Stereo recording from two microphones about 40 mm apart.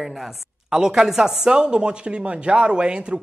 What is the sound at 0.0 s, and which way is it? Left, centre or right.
Speech, centre.